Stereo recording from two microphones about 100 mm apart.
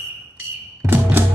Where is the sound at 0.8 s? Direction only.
20° right (ahead or behind).